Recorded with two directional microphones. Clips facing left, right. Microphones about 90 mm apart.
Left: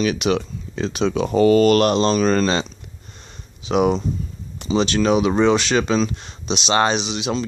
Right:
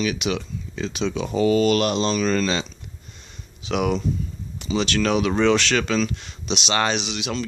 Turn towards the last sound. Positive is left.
turn(degrees=25)  # may be behind; listen again after turning